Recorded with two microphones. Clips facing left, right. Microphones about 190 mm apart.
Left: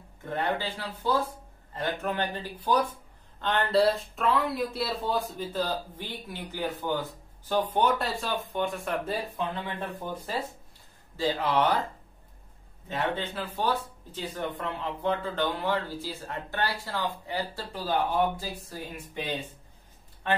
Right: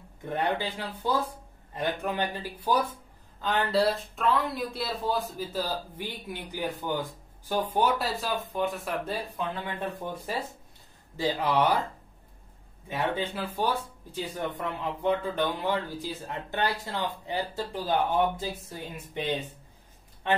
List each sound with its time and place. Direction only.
0.2 s speech: 15° right (ahead or behind)
11.1 s speech: 15° right (ahead or behind)
12.8 s speech: 10° right (ahead or behind)